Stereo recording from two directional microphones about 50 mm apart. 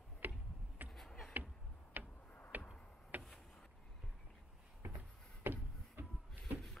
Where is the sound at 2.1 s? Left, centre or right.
Left.